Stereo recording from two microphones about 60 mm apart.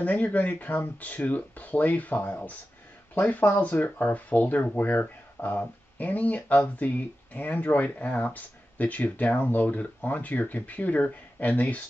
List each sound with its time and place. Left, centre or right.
0.0 s speech: left